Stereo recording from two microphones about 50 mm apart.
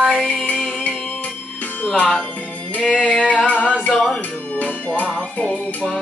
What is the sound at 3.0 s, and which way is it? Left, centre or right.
Music, centre.